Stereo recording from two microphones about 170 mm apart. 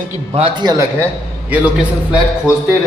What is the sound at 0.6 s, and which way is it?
Speech, 20° right (ahead or behind).